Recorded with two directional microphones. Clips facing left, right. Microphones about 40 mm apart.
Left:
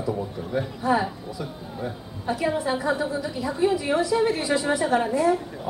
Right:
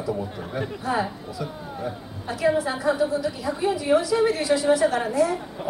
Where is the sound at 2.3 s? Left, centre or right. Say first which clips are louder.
Right 2 dB; centre.